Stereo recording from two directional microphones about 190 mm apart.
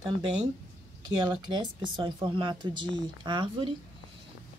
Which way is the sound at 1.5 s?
25° right (ahead or behind).